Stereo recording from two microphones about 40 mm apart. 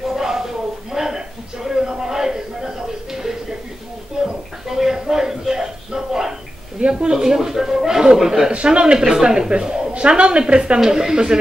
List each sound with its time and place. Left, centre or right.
0.1 s a sound: centre
6.8 s speech: right
8.5 s a woman's voice: right
10.8 s speech: centre